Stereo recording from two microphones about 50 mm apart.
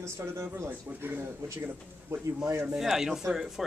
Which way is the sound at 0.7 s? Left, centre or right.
Right.